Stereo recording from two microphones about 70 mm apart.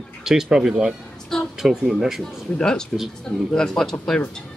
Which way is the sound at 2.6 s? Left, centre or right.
Centre.